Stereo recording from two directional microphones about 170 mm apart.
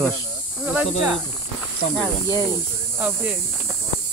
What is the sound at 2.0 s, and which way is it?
Speech, 20° right (ahead or behind).